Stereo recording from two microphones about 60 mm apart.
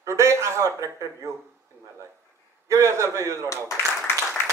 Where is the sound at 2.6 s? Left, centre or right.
Right.